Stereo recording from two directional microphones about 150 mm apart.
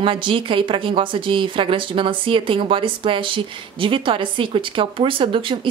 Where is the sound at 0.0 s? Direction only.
35° right (ahead or behind).